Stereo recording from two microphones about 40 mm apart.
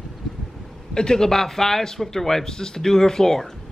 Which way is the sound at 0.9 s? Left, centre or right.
Centre.